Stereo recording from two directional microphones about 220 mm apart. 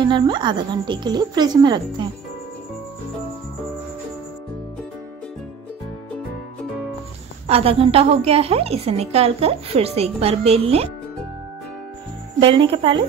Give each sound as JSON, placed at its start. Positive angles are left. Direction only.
{"t": 0.0, "sound": "a woman's voice", "side_deg": -20}
{"t": 7.4, "sound": "a woman's voice", "side_deg": -25}
{"t": 12.4, "sound": "a woman's voice", "side_deg": -25}